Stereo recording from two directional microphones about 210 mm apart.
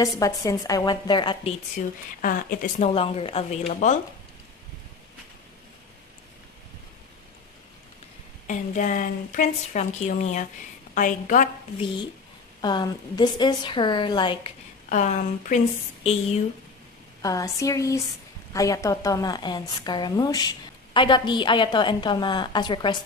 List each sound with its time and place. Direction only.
0.2 s a woman's voice: 15° left (ahead or behind)
2.2 s a woman's voice: 40° left (ahead or behind)
8.5 s speech: 40° left (ahead or behind)
11.8 s a woman's voice: 25° left (ahead or behind)
14.9 s speech: 35° left (ahead or behind)
17.2 s a woman's voice: 15° left (ahead or behind)